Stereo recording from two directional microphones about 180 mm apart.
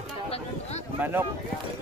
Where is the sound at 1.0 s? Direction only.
10° right (ahead or behind).